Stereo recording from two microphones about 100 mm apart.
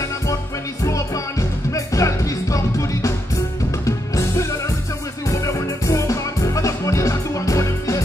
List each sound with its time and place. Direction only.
0.8 s music: 35° left (ahead or behind)
5.3 s music: 30° left (ahead or behind)